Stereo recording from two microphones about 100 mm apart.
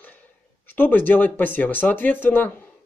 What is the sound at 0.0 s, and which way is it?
Speech, 15° left (ahead or behind).